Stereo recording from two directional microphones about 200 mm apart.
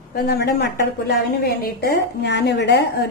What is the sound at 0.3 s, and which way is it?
A woman's voice, 55° left (ahead or behind).